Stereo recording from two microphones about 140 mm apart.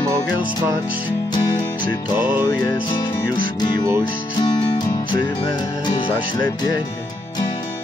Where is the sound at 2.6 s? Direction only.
35° left (ahead or behind).